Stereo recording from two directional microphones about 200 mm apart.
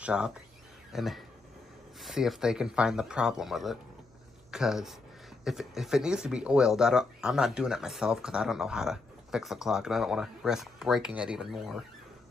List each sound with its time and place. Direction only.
0.0 s speech: 5° right (ahead or behind)